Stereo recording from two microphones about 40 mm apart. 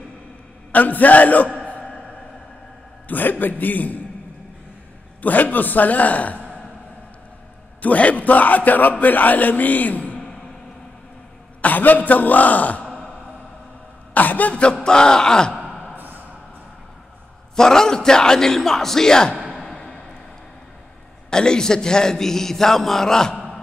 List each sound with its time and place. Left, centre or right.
0.7 s a man's voice: left
3.1 s a man's voice: left
5.2 s a man's voice: left
7.8 s a man's voice: left
11.6 s a man's voice: left
14.1 s a man's voice: left
14.5 s speech: left
17.6 s a man's voice: centre
19.5 s a sound: centre
21.3 s a man's voice: centre